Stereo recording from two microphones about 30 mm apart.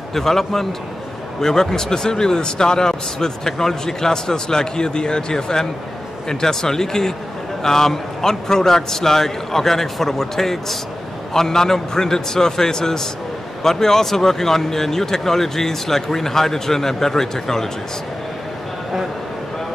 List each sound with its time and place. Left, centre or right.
0.1 s a man's voice: centre